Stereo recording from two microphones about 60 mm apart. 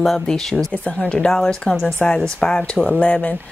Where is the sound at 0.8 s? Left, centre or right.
Left.